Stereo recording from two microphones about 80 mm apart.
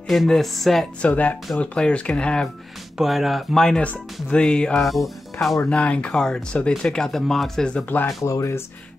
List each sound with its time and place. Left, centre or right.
0.1 s speech: centre
1.0 s speech: centre
3.0 s speech: centre
4.8 s speech: centre
5.7 s speech: centre
8.2 s speech: left